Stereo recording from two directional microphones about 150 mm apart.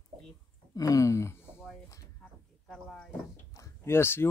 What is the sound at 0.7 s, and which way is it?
Speech, 25° left (ahead or behind).